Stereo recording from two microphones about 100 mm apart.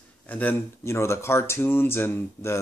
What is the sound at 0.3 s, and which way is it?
Speech, 15° left (ahead or behind).